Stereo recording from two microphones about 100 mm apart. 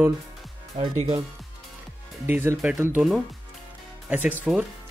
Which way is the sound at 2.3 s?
25° right (ahead or behind).